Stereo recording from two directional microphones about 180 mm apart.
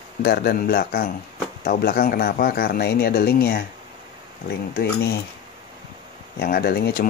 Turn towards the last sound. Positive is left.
turn(degrees=60)  # may be behind; listen again after turning